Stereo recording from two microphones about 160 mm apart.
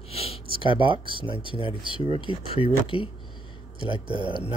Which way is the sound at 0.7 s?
30° right (ahead or behind).